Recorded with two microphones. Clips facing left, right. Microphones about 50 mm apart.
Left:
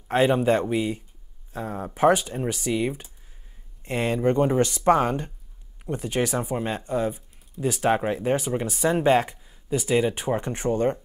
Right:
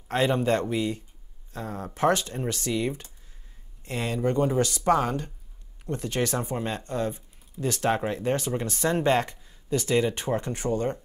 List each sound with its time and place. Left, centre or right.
0.1 s speech: centre
3.8 s speech: left
5.9 s speech: centre
10.4 s speech: left